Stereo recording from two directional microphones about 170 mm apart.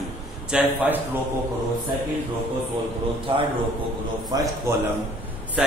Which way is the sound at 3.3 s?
30° right (ahead or behind).